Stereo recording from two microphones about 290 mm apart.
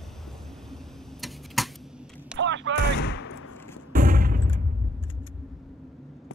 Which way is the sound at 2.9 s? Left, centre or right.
Left.